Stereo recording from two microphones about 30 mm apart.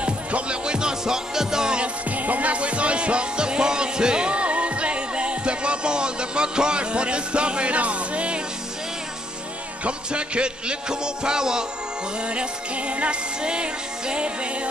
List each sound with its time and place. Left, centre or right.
0.0 s music: right; by 1.7 s centre
2.0 s music: right
4.3 s music: right
9.8 s music: right
12.3 s music: right
13.4 s music: right